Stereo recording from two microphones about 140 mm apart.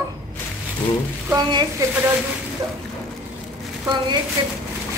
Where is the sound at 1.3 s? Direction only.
30° right (ahead or behind).